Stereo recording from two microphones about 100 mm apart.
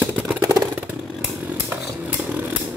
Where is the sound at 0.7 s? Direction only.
10° right (ahead or behind).